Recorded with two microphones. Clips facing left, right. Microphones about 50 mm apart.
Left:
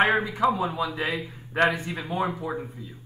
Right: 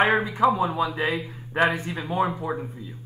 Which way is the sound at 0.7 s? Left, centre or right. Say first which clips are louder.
Right 3 dB; right.